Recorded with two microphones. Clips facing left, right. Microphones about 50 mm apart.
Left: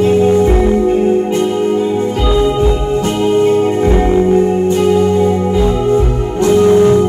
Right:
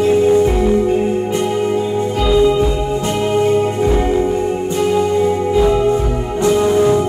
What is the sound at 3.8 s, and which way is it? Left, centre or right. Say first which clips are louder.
Music: left 3 dB; left.